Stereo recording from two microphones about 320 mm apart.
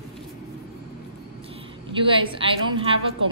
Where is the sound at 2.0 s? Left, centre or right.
Centre.